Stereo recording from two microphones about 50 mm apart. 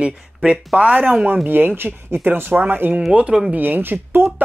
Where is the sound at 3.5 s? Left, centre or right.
Right.